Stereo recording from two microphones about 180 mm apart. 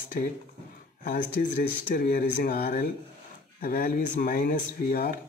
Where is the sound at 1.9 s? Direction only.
50° left (ahead or behind).